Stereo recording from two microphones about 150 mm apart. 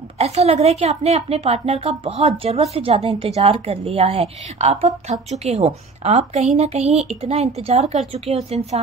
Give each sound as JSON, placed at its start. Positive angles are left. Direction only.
{"t": 0.2, "sound": "a woman's voice", "side_deg": -45}